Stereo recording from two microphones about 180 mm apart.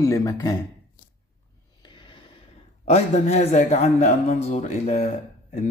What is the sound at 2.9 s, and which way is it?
A man's voice, 35° left (ahead or behind).